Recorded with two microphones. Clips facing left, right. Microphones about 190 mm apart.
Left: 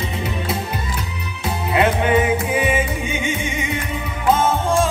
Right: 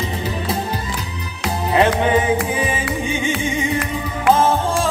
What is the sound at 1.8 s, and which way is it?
Music, 30° right (ahead or behind).